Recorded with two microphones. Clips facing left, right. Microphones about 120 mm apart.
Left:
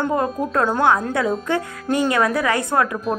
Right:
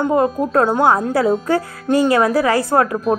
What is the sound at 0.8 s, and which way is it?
A woman's voice, 35° right (ahead or behind).